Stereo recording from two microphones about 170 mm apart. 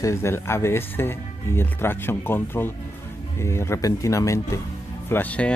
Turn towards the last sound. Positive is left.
turn(degrees=10)  # may be behind; listen again after turning